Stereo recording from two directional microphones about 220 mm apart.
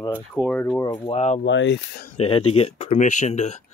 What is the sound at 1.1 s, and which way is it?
Speech, 30° left (ahead or behind).